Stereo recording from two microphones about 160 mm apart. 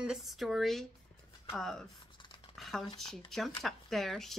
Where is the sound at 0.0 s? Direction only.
5° right (ahead or behind).